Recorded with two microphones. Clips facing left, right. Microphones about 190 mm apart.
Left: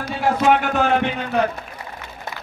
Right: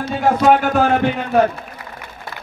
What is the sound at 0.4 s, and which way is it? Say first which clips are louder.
Speech: right 3 dB; 40° right (ahead or behind).